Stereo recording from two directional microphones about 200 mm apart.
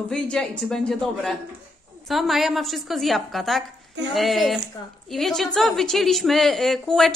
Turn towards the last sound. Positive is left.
turn(degrees=0)  # may be behind; listen again after turning